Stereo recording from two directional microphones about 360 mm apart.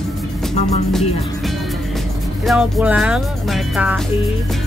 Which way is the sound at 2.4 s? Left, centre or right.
Centre.